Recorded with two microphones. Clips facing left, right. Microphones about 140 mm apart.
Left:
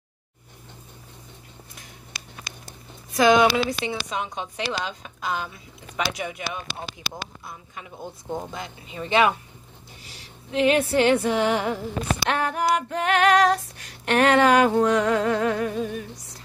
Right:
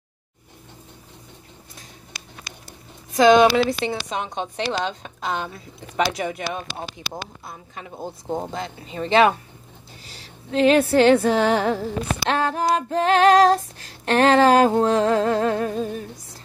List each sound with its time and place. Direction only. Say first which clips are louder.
3.2 s speech: right 4 dB; 25° right (ahead or behind)
3.4 s female singing: right 4 dB; 35° right (ahead or behind)
10.5 s female singing: right 4 dB; 35° right (ahead or behind)